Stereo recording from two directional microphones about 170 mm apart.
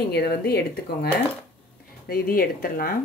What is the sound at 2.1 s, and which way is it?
Speech, 60° left (ahead or behind).